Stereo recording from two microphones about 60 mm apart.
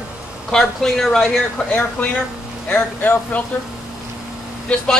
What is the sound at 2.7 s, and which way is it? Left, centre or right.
Speech, left.